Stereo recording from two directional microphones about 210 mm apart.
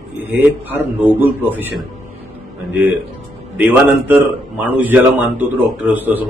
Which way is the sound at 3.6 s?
10° right (ahead or behind).